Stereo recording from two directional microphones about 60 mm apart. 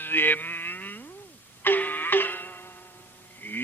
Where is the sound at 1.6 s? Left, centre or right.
Left.